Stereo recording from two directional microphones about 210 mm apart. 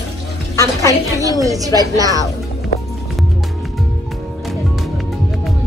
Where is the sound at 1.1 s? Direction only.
15° right (ahead or behind).